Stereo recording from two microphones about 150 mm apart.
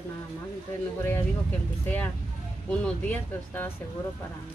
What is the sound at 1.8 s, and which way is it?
Speech, 10° left (ahead or behind).